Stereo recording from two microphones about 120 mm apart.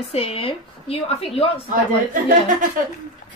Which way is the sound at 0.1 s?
55° left (ahead or behind).